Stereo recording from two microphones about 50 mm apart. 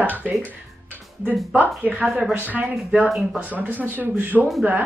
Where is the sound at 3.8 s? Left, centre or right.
Right.